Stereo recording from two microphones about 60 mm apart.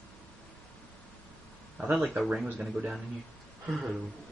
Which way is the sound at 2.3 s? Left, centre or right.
Centre.